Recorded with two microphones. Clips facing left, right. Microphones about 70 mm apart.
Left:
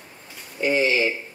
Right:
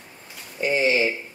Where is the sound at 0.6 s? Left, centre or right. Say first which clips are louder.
Even; right.